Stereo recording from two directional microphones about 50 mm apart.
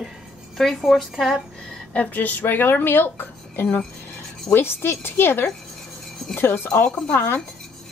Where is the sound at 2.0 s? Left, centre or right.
Left.